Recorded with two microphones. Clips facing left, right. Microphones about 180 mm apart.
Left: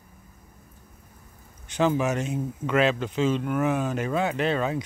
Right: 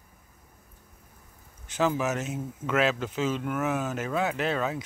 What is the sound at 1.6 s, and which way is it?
Speech, 5° right (ahead or behind).